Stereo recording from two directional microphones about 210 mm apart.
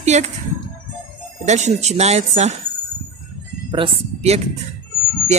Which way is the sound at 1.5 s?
35° right (ahead or behind).